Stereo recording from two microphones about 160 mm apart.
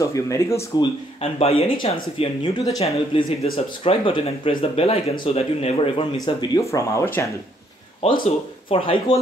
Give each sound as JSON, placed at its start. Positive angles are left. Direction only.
{"t": 0.0, "sound": "speech", "side_deg": 20}
{"t": 1.2, "sound": "speech", "side_deg": 40}
{"t": 6.2, "sound": "speech", "side_deg": 20}
{"t": 8.2, "sound": "speech", "side_deg": 35}